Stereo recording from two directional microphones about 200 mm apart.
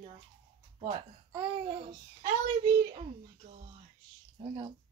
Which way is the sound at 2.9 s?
35° right (ahead or behind).